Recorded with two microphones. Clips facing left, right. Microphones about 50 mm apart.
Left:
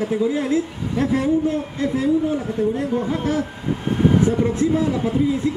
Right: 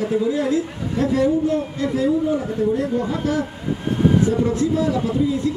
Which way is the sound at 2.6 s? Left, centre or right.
Left.